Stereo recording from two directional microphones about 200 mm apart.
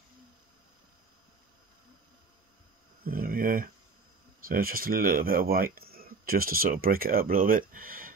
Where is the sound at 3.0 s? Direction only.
45° right (ahead or behind).